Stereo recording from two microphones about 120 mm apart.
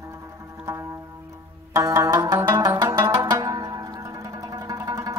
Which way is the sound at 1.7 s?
25° right (ahead or behind).